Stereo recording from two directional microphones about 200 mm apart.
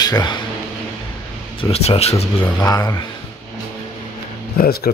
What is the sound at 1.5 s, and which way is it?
Speech, 30° left (ahead or behind).